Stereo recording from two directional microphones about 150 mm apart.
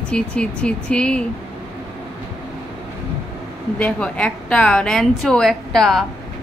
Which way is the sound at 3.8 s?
10° left (ahead or behind).